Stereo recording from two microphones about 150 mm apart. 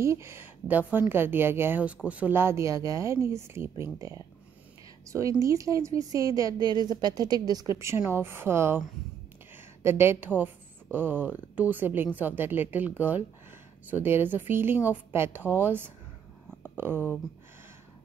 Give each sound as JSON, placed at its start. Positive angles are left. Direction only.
{"t": 0.0, "sound": "a woman's voice", "side_deg": -20}
{"t": 5.4, "sound": "a woman's voice", "side_deg": -20}
{"t": 8.0, "sound": "a woman's voice", "side_deg": -15}
{"t": 9.8, "sound": "a woman's voice", "side_deg": -15}